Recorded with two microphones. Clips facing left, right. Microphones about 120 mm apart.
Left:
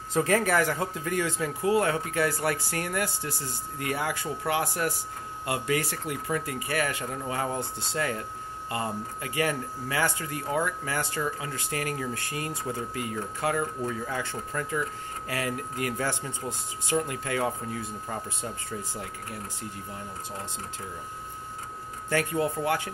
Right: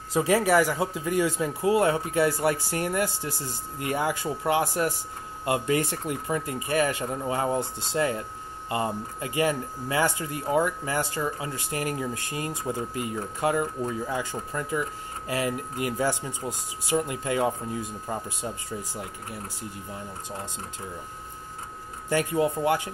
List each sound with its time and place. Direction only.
0.1 s speech: 10° right (ahead or behind)
22.1 s speech: 20° right (ahead or behind)